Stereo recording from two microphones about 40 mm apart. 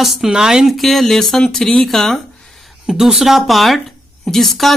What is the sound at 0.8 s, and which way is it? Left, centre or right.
A woman's voice, centre.